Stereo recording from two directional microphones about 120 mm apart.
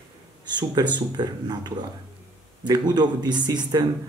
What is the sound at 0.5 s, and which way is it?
Speech, 40° right (ahead or behind).